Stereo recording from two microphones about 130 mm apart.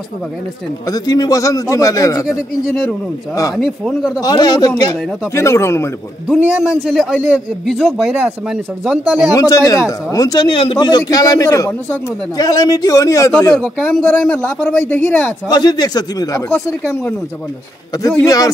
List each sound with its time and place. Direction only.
0.8 s a man's voice: 30° left (ahead or behind)
3.5 s speech: centre (ahead or behind)
4.2 s a man's voice: 30° left (ahead or behind)
6.5 s speech: 5° right (ahead or behind)
9.3 s a man's voice: 25° left (ahead or behind)
10.5 s a man's voice: 40° left (ahead or behind); by 13.3 s 25° left (ahead or behind)
13.4 s speech: 15° left (ahead or behind)
15.4 s speech: 30° left (ahead or behind)
16.4 s speech: 10° left (ahead or behind)
17.9 s a man's voice: 25° left (ahead or behind)